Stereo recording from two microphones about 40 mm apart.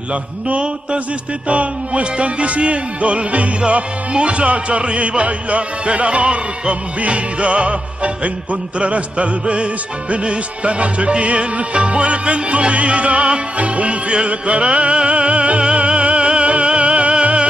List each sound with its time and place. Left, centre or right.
0.5 s music: right